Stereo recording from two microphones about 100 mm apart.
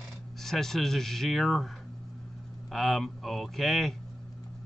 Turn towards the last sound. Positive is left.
turn(degrees=0)  # may be behind; listen again after turning